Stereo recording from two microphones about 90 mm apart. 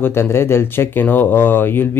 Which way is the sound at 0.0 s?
30° left (ahead or behind).